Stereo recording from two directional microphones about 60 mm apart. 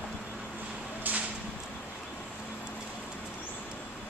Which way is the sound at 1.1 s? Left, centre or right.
Right.